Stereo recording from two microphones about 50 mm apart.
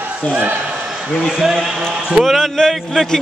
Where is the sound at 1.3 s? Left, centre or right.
Centre.